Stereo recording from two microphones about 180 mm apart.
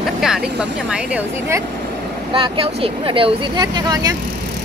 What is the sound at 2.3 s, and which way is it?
Speech, 30° right (ahead or behind).